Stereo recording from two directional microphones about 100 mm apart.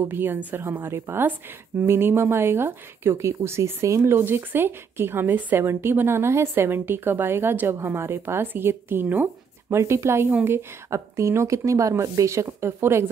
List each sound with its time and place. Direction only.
0.0 s speech: 20° right (ahead or behind)